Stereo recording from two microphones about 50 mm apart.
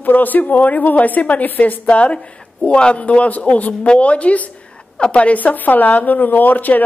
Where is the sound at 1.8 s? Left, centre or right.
Left.